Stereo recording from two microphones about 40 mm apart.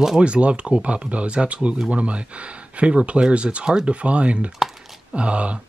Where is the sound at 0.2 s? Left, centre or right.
Right.